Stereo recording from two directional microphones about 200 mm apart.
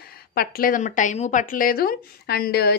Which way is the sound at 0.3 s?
50° left (ahead or behind).